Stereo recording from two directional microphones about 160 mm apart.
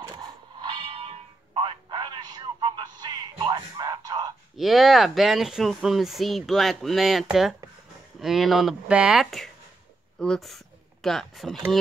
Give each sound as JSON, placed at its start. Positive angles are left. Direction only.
{"t": 0.1, "sound": "fire alarm", "side_deg": -30}
{"t": 4.6, "sound": "speech", "side_deg": 0}